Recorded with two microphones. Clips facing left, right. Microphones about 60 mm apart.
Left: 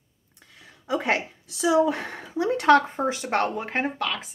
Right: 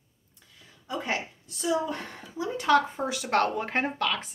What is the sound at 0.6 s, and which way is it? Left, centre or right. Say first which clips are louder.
Speech: left 7 dB; left.